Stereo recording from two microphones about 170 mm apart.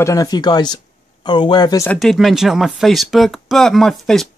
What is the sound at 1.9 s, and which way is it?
Speech, centre (ahead or behind).